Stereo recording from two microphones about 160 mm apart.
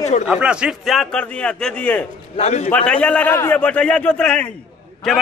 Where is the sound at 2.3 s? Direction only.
40° left (ahead or behind).